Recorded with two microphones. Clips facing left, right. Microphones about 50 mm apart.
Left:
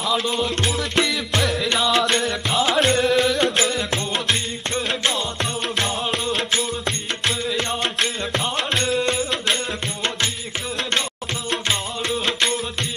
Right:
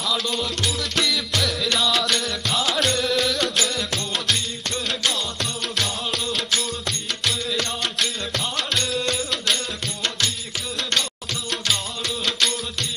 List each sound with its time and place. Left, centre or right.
0.7 s music: left
7.4 s music: left
12.3 s music: left